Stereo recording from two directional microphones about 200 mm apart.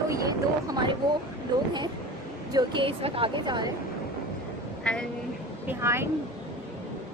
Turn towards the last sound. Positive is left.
turn(degrees=-10)  # may be behind; listen again after turning